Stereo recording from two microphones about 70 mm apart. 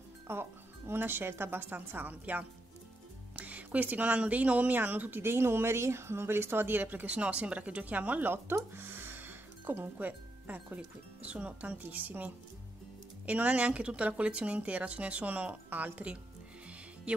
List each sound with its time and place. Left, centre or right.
0.3 s speech: right
8.7 s music: right
10.8 s speech: centre